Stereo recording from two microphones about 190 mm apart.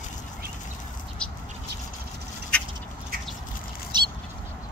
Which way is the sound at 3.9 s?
25° right (ahead or behind).